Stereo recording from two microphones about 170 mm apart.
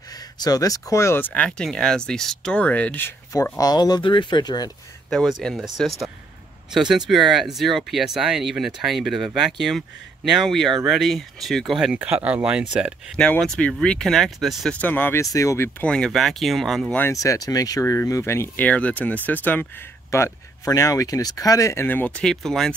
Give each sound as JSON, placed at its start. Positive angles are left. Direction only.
{"t": 0.4, "sound": "speech", "side_deg": 20}
{"t": 3.3, "sound": "speech", "side_deg": 20}
{"t": 5.1, "sound": "speech", "side_deg": 0}
{"t": 13.2, "sound": "speech", "side_deg": 5}
{"t": 17.0, "sound": "speech", "side_deg": 20}